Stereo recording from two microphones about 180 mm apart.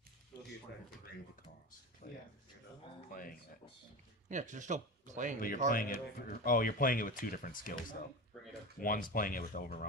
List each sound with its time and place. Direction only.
2.0 s speech: 50° left (ahead or behind)
3.1 s a sound: 50° left (ahead or behind)
4.3 s speech: 45° right (ahead or behind)
5.7 s speech: 50° left (ahead or behind)